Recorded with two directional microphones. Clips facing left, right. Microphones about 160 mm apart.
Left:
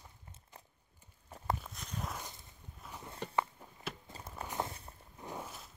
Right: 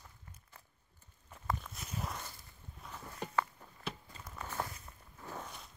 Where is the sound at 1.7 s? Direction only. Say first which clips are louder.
Even; 5° right (ahead or behind).